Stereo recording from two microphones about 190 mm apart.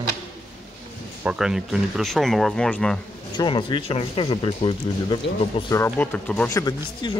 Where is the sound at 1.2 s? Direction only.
5° right (ahead or behind).